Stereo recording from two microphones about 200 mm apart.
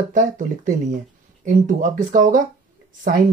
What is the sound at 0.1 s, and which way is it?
Speech, 40° right (ahead or behind).